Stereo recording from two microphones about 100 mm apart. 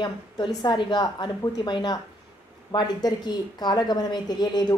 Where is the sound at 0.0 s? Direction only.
45° left (ahead or behind).